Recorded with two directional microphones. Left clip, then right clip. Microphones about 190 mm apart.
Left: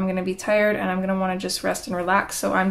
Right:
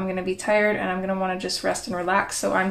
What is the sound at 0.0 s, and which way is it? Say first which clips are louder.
Speech: left 1 dB; 20° left (ahead or behind).